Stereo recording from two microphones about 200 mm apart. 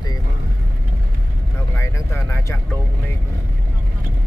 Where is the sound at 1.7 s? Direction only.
10° left (ahead or behind).